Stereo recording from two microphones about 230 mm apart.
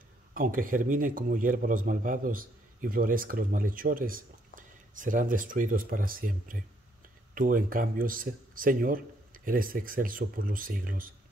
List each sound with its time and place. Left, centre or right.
0.3 s speech: right